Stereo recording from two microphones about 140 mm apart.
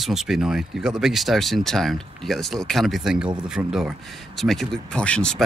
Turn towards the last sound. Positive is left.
turn(degrees=5)  # may be behind; listen again after turning